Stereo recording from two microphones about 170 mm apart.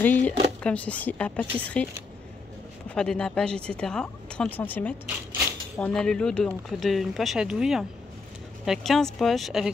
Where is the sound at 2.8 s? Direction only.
5° left (ahead or behind).